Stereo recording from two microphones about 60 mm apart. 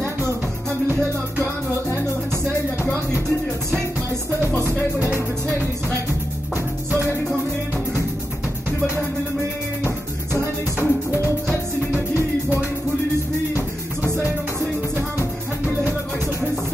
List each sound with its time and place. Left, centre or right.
4.6 s music: left
9.8 s music: left
12.1 s music: right